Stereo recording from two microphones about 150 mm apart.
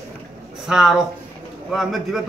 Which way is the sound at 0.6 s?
5° right (ahead or behind).